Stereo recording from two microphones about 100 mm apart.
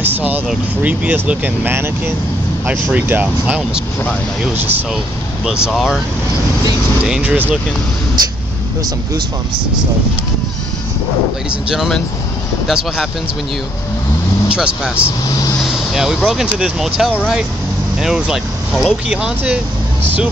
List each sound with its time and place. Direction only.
0.0 s vehicle: 15° right (ahead or behind)
0.8 s speech: 15° right (ahead or behind)
5.7 s speech: centre (ahead or behind)
7.0 s speech: 10° right (ahead or behind)
11.7 s speech: centre (ahead or behind)
14.5 s speech: 10° right (ahead or behind)